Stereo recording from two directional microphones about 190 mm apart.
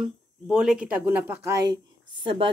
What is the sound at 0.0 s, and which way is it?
A woman's voice, centre (ahead or behind).